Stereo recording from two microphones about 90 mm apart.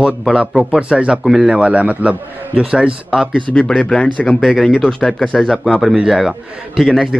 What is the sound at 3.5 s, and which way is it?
Speech, 10° left (ahead or behind).